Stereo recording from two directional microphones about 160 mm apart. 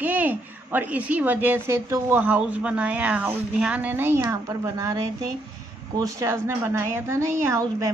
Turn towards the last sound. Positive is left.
turn(degrees=-20)  # may be behind; listen again after turning